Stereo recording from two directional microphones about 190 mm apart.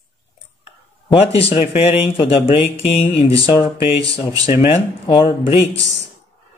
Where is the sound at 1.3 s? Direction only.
30° left (ahead or behind).